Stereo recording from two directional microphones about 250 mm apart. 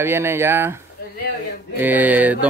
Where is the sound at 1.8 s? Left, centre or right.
Centre.